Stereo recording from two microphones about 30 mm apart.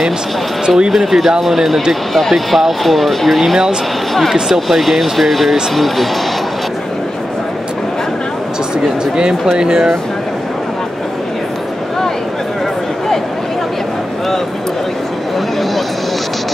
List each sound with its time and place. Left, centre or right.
0.7 s speech: right
0.9 s speech: centre
9.6 s speech: right